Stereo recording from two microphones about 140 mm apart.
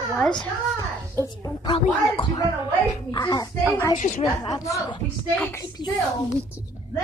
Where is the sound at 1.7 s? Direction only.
35° left (ahead or behind).